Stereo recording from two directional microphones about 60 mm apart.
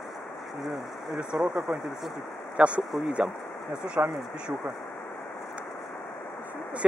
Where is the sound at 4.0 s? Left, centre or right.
Right.